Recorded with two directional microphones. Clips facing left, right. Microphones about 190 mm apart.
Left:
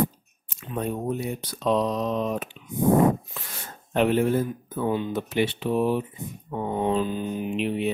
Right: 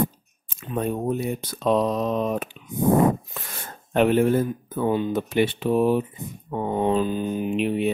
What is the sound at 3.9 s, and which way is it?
Speech, 55° right (ahead or behind).